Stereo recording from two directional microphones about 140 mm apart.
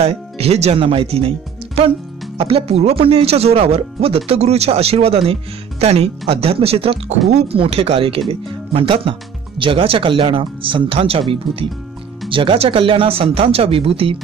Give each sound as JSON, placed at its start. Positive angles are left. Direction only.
{"t": 0.0, "sound": "speech", "side_deg": -45}
{"t": 2.3, "sound": "speech", "side_deg": -45}